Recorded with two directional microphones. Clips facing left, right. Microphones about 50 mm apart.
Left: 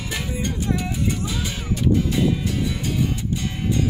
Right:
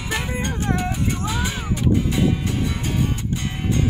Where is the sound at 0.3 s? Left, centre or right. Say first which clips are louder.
Left 2 dB; right.